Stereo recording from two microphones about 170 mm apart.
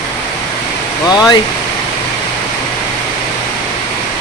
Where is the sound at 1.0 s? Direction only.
25° left (ahead or behind).